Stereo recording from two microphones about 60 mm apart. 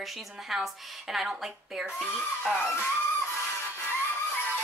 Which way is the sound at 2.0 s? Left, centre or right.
Left.